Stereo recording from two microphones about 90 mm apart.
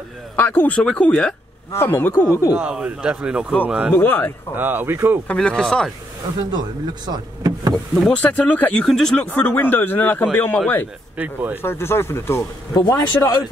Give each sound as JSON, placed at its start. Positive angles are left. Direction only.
{"t": 0.4, "sound": "speech", "side_deg": 20}
{"t": 1.7, "sound": "speech", "side_deg": 25}
{"t": 2.5, "sound": "speech", "side_deg": -10}
{"t": 4.0, "sound": "speech", "side_deg": 20}
{"t": 4.6, "sound": "speech", "side_deg": -25}
{"t": 5.3, "sound": "speech", "side_deg": 10}
{"t": 7.1, "sound": "speech", "side_deg": -45}
{"t": 7.9, "sound": "speech", "side_deg": 5}
{"t": 8.2, "sound": "speech", "side_deg": 20}
{"t": 8.8, "sound": "speech", "side_deg": 5}
{"t": 9.2, "sound": "speech", "side_deg": 20}
{"t": 11.1, "sound": "speech", "side_deg": -20}
{"t": 11.6, "sound": "speech", "side_deg": 25}
{"t": 12.7, "sound": "speech", "side_deg": 45}